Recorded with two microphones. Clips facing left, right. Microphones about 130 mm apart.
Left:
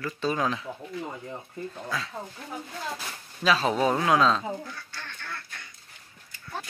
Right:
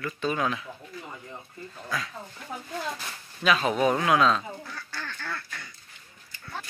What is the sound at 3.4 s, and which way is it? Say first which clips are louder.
Speech: even; 30° left (ahead or behind).